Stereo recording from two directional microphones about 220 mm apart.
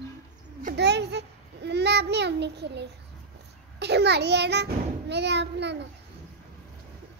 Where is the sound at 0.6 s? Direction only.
45° right (ahead or behind).